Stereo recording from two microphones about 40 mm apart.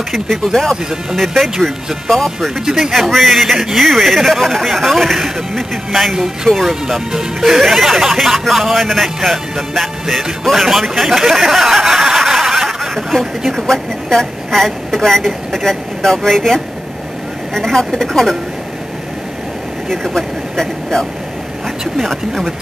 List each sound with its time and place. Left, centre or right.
0.1 s speech: centre
13.2 s a woman's voice: centre
19.9 s a woman's voice: centre